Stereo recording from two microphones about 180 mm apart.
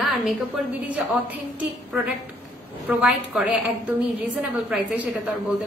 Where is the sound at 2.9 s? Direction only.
5° right (ahead or behind).